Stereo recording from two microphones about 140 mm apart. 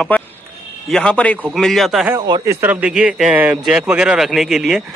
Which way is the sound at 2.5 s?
15° right (ahead or behind).